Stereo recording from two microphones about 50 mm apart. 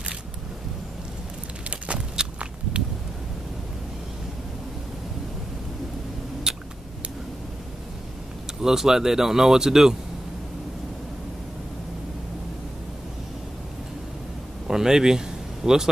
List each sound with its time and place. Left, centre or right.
1.9 s walk: right
6.5 s a sound: centre
8.5 s speech: centre
14.7 s speech: centre